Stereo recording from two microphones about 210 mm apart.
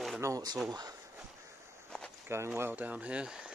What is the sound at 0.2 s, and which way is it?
Speech, 15° right (ahead or behind).